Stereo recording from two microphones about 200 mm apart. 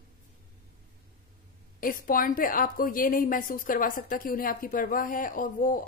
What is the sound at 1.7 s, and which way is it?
A woman's voice, 45° left (ahead or behind).